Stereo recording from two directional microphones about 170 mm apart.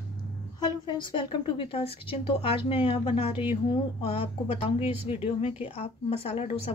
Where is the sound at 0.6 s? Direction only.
30° left (ahead or behind).